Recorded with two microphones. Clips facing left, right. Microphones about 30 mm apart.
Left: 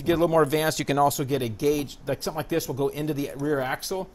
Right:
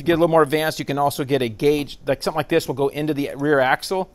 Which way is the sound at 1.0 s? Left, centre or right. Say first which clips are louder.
Right 4 dB; right.